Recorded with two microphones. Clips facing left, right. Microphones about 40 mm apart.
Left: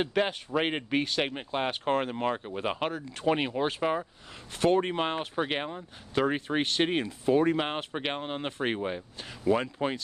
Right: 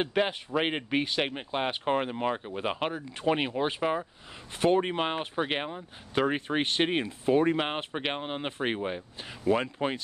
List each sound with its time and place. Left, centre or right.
0.0 s speech: centre
6.1 s speech: right
9.6 s speech: right